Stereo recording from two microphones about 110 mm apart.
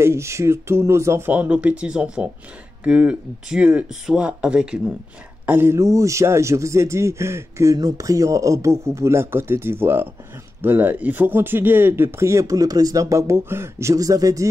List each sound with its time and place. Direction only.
0.0 s a man's voice: 25° right (ahead or behind); by 4.9 s 10° right (ahead or behind)
5.5 s a man's voice: 20° right (ahead or behind)